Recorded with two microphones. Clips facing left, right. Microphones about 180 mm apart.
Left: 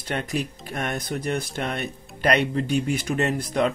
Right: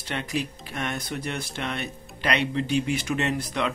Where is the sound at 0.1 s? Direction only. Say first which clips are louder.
Left 2 dB; 45° left (ahead or behind).